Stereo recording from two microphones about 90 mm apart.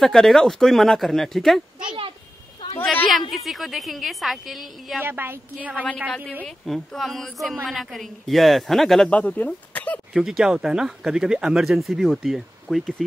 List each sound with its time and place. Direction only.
0.0 s speech: 5° left (ahead or behind)
3.1 s speech: centre (ahead or behind)
5.0 s a woman's voice: 25° right (ahead or behind)
6.4 s speech: 5° left (ahead or behind)
9.1 s speech: 15° left (ahead or behind)
10.1 s speech: 5° right (ahead or behind)